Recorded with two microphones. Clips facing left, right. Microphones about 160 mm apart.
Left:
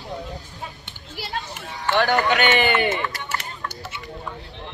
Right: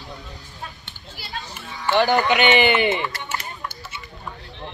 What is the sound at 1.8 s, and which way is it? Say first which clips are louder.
Speech: right 1 dB; 20° right (ahead or behind).